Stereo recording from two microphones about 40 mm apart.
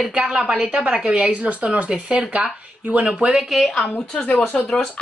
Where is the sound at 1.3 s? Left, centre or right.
Right.